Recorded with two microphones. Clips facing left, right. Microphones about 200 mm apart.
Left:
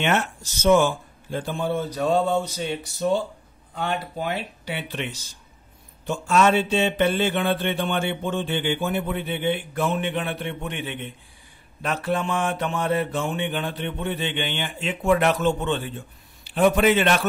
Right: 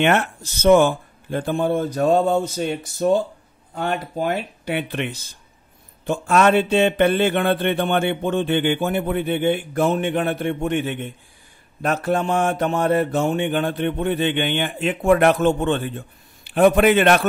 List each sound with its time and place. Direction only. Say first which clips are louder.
0.0 s mantra: right 5 dB; 60° right (ahead or behind)